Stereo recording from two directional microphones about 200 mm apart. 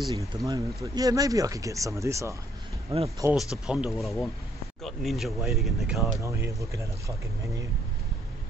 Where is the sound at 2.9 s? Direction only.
30° right (ahead or behind).